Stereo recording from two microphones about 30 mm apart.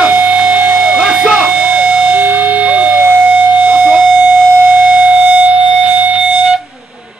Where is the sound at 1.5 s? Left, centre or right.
Right.